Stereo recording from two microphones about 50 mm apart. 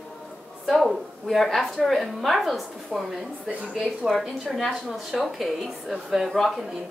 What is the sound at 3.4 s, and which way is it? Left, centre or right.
Speech, right.